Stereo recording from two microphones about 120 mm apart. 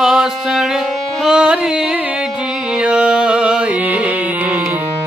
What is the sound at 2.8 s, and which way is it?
Carnatic music, 10° right (ahead or behind).